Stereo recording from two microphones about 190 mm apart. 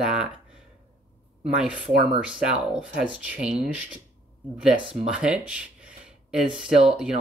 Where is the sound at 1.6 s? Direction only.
5° right (ahead or behind).